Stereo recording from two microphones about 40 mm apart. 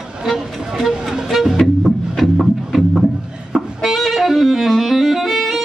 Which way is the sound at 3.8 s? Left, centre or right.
Centre.